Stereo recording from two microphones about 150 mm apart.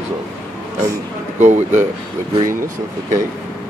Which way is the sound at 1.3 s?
50° right (ahead or behind).